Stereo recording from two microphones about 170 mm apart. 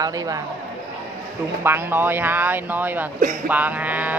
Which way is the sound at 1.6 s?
15° right (ahead or behind).